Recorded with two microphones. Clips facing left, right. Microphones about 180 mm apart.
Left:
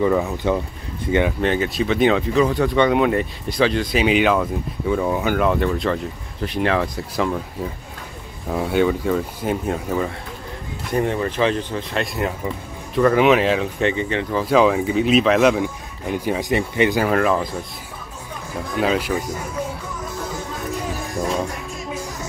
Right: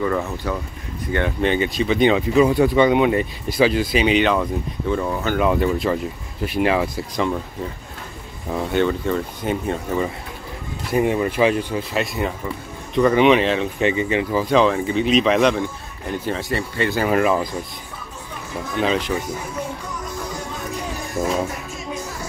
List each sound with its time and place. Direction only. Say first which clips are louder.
0.0 s speech: left 4 dB; 15° left (ahead or behind)
1.4 s speech: even; centre (ahead or behind)
5.4 s speech: right 1 dB; 5° right (ahead or behind)
7.2 s speech: left 1 dB; 5° left (ahead or behind)
10.9 s speech: right 2 dB; 10° right (ahead or behind)
14.4 s speech: left 3 dB; 5° left (ahead or behind)
16.9 s speech: even; 5° right (ahead or behind)
18.8 s speech: left 1 dB; 5° left (ahead or behind)
21.2 s speech: right 2 dB; 5° right (ahead or behind)